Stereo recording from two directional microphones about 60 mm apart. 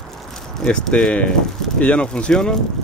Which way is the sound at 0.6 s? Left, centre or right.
Centre.